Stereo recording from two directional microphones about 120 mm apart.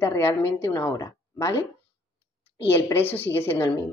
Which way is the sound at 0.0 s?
20° left (ahead or behind).